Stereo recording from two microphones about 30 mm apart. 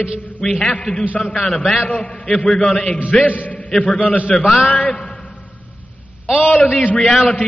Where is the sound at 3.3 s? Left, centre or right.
Left.